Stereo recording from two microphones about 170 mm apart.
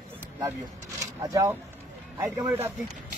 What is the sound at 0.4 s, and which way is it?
Speech, 20° right (ahead or behind).